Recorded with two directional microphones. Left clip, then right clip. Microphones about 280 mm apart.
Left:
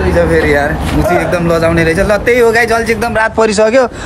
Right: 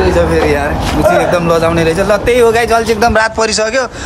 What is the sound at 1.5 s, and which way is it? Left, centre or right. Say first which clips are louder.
A man's voice: even; centre.